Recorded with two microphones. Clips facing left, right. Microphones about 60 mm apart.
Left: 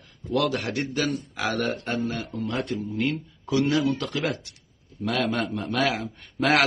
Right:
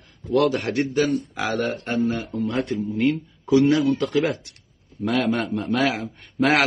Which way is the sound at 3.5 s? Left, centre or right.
Centre.